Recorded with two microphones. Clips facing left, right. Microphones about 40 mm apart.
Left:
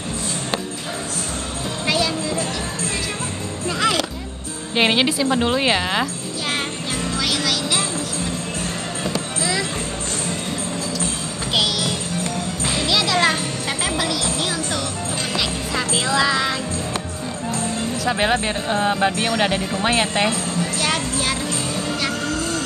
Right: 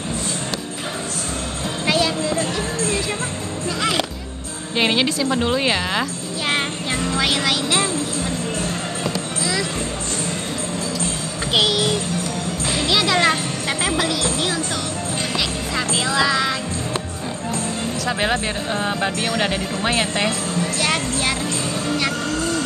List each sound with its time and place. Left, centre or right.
1.9 s music: centre
4.7 s speech: centre
7.2 s music: centre
9.4 s music: centre
11.5 s music: centre
18.0 s speech: centre
20.8 s music: centre